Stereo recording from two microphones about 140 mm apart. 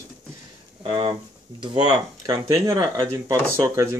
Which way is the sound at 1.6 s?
30° right (ahead or behind).